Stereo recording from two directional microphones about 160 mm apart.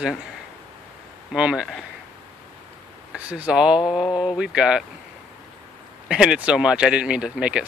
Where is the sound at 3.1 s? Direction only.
10° right (ahead or behind).